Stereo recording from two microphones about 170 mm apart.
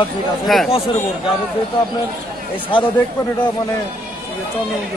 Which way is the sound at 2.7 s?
30° left (ahead or behind).